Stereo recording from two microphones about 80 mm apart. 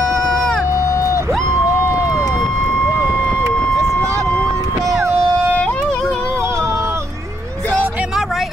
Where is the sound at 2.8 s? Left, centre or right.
Left.